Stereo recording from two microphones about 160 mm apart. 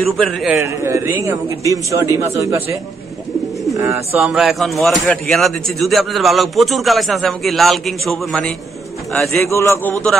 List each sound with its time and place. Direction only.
0.2 s a man's voice: centre (ahead or behind)
0.6 s a man's voice: 15° right (ahead or behind)
3.7 s speech: 15° right (ahead or behind)
4.2 s a man's voice: centre (ahead or behind)
9.4 s a man's voice: 15° left (ahead or behind)